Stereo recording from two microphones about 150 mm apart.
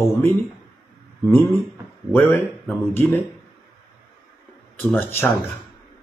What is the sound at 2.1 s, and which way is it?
Speech, 15° left (ahead or behind).